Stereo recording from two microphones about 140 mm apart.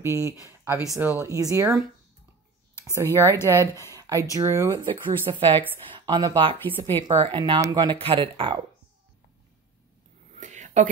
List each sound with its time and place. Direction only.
0.0 s speech: 20° right (ahead or behind)
2.8 s speech: 20° right (ahead or behind)
4.8 s speech: 35° right (ahead or behind)
10.4 s whispering: 60° right (ahead or behind)